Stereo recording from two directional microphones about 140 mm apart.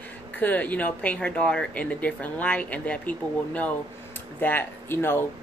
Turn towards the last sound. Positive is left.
turn(degrees=15)  # may be behind; listen again after turning